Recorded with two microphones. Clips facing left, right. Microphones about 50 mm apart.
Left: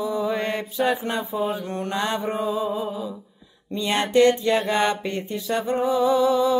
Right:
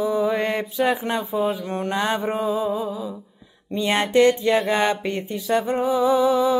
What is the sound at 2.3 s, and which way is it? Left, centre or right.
Music, centre.